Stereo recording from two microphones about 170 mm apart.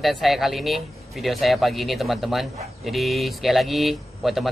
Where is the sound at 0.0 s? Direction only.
Centre (ahead or behind).